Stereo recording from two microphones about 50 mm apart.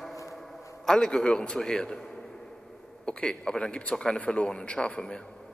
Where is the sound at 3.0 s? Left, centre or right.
Centre.